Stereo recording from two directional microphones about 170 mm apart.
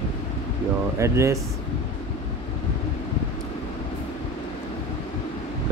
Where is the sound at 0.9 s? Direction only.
15° right (ahead or behind).